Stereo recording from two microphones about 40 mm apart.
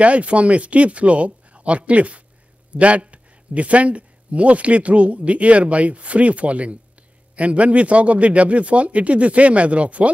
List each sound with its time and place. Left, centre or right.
0.0 s speech: right